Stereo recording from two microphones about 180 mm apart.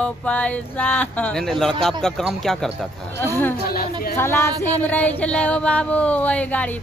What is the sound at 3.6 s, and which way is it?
Speech, 55° left (ahead or behind).